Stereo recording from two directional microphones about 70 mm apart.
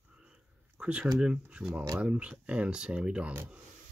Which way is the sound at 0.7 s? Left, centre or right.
Centre.